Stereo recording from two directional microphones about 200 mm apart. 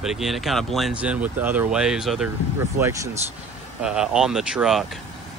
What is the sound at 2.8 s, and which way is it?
Speech, 15° right (ahead or behind).